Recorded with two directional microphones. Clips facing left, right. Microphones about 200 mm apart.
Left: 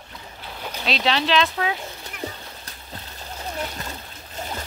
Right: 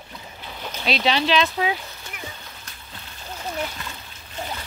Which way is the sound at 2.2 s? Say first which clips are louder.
Left 9 dB; 35° left (ahead or behind).